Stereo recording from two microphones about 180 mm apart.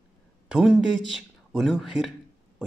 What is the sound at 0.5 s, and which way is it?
A man's voice, centre (ahead or behind).